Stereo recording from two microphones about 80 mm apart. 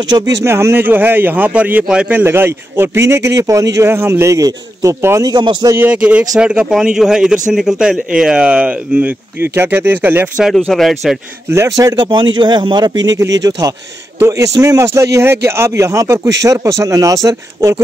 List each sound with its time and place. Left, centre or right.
0.1 s speech: right
0.5 s speech: right; by 2.2 s centre
2.2 s a man's voice: right
5.2 s a man's voice: right
5.8 s a man's voice: centre
10.7 s a man's voice: centre
11.5 s speech: right
12.1 s speech: right
14.2 s a man's voice: right